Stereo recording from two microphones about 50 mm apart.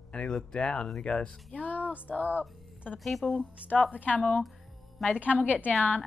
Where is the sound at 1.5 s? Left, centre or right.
Left.